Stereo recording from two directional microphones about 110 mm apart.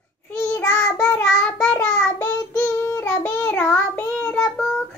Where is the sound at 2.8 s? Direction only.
20° left (ahead or behind).